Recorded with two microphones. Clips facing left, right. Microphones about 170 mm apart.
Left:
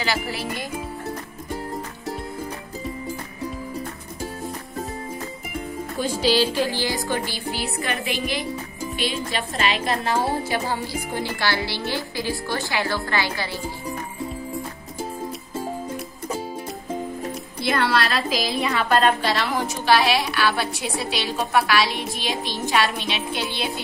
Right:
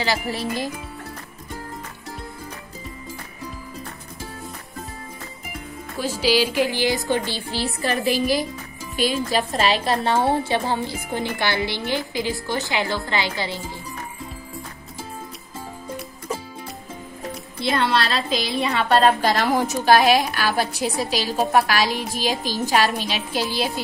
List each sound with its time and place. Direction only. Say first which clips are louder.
0.0 s a woman's voice: right 2 dB; 35° right (ahead or behind)
5.9 s speech: even; 5° right (ahead or behind); by 7.4 s 25° right (ahead or behind)
7.8 s a woman's voice: right 8 dB; 35° right (ahead or behind); by 13.6 s 20° right (ahead or behind)
17.6 s a woman's voice: right 1 dB; 25° right (ahead or behind)
19.2 s a woman's voice: right 4 dB; 45° right (ahead or behind)